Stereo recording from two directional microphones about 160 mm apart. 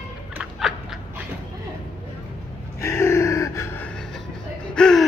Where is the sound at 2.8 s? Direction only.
15° left (ahead or behind).